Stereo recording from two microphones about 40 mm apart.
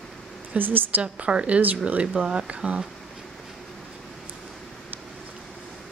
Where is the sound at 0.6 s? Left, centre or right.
Right.